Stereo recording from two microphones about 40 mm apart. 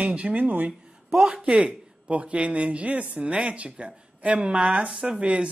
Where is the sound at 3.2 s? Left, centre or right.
Right.